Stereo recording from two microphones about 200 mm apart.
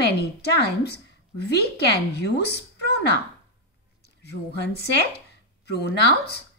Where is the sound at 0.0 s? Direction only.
55° left (ahead or behind).